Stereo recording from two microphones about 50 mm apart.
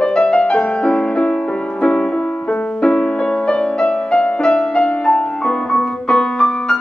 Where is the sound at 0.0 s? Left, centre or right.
Centre.